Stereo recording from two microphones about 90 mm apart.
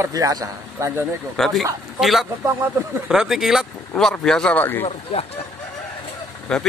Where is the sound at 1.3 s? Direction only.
Centre (ahead or behind).